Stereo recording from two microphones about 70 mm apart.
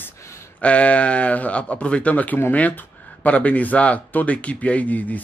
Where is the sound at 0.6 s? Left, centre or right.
Centre.